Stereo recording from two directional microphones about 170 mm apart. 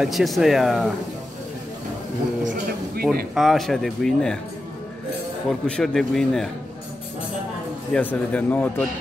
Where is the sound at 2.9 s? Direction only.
65° right (ahead or behind).